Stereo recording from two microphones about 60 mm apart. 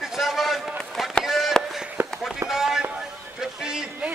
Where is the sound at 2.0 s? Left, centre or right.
Right.